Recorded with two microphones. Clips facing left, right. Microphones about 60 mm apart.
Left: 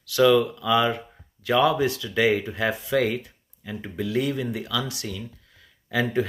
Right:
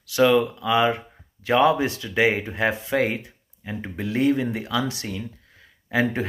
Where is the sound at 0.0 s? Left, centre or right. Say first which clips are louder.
Even; right.